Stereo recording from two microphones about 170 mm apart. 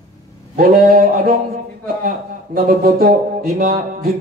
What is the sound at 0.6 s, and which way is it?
A man's voice, 60° right (ahead or behind).